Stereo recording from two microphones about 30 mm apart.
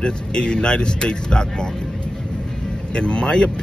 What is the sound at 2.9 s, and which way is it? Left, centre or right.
Speech, left.